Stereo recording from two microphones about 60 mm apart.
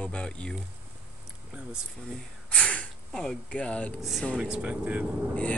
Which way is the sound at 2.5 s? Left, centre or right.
Left.